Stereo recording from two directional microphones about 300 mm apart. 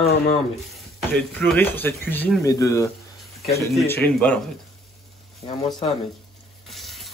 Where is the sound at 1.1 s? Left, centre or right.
Centre.